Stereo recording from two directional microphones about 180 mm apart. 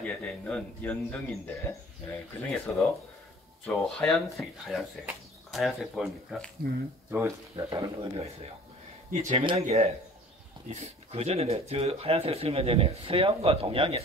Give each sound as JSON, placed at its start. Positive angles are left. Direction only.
{"t": 0.0, "sound": "a man's voice", "side_deg": 5}
{"t": 7.1, "sound": "speech", "side_deg": -15}
{"t": 9.1, "sound": "speech", "side_deg": -45}